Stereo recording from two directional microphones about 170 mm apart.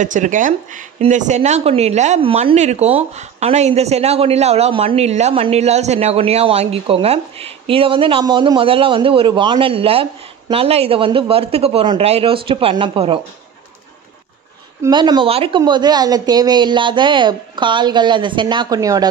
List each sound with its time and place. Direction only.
0.0 s speech: 50° right (ahead or behind); by 13.2 s 30° right (ahead or behind)
14.8 s speech: 25° right (ahead or behind)